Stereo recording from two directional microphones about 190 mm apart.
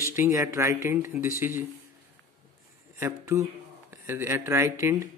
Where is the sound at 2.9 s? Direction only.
15° right (ahead or behind).